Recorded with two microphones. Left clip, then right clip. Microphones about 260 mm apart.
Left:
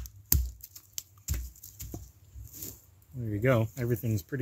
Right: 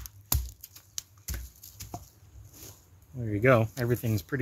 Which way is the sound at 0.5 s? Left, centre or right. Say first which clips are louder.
Right 2 dB; centre.